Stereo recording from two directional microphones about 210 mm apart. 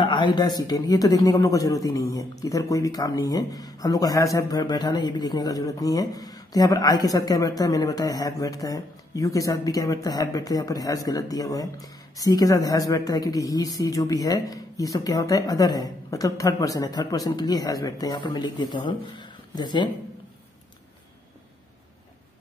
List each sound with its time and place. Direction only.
0.0 s speech: 20° left (ahead or behind)